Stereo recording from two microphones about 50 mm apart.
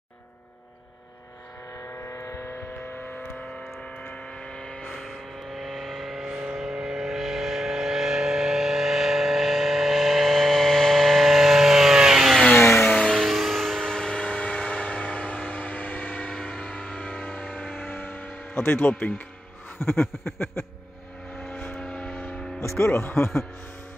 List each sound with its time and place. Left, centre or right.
1.9 s vehicle: left
2.8 s vehicle: left
3.3 s a sound: left; by 6.3 s centre
6.4 s vehicle: centre
12.5 s vehicle: left
13.2 s vehicle: centre; by 17.7 s left
17.8 s music: left
19.8 s a sound: left
21.4 s vehicle: left
21.8 s civil defense siren: left
22.1 s hum: left
22.8 s a sound: left